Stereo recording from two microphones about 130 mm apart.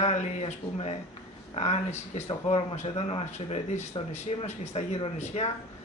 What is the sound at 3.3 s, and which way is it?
A man's voice, 55° left (ahead or behind).